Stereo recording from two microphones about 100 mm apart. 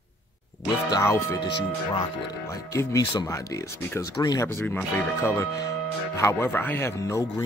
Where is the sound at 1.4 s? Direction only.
50° left (ahead or behind).